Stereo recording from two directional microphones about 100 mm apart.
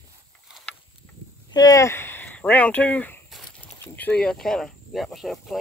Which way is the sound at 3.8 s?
20° left (ahead or behind).